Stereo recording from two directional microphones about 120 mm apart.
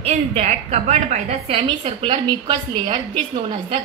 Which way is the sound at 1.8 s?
45° right (ahead or behind).